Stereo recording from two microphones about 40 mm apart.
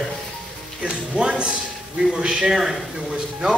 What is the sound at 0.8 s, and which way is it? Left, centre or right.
Music, right.